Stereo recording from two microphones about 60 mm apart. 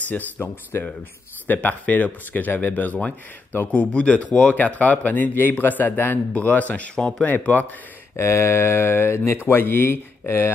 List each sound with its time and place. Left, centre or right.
0.1 s speech: left
7.0 s speech: centre
7.2 s speech: left
8.2 s speech: left